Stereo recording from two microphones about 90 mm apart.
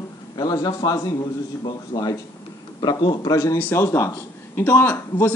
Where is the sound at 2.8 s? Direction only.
55° left (ahead or behind).